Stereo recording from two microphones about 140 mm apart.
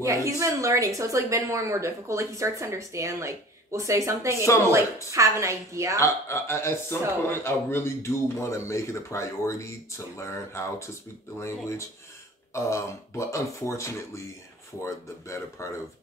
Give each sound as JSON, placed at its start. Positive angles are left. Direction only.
{"t": 0.0, "sound": "a woman's voice", "side_deg": -20}
{"t": 5.9, "sound": "a man's voice", "side_deg": 20}